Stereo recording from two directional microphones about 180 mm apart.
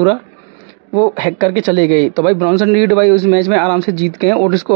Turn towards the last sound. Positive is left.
turn(degrees=-15)  # may be behind; listen again after turning